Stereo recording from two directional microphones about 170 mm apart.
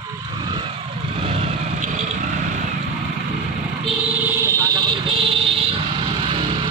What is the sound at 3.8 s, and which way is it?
Vehicle, 10° right (ahead or behind).